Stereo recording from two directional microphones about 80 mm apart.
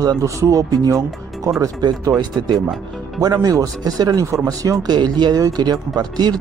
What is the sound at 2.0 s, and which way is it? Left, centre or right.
Speech, right.